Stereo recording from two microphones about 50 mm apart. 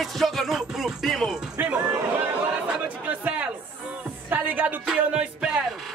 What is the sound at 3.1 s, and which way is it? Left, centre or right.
Chatter, right.